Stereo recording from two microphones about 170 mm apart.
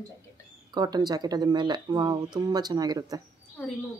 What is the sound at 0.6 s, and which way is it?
Speech, 25° right (ahead or behind).